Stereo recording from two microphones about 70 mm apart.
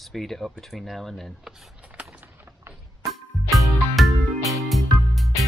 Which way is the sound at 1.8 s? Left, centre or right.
Centre.